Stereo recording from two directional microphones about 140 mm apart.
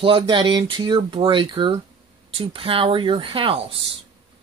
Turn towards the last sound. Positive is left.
turn(degrees=-40)  # may be behind; listen again after turning